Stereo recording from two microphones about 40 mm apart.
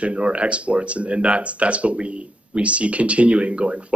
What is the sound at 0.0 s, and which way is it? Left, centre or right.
Speech, right.